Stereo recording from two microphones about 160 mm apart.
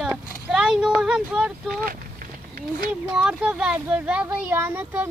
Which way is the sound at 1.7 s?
65° right (ahead or behind).